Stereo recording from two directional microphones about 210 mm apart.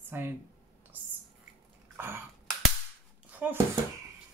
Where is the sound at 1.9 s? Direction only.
10° right (ahead or behind).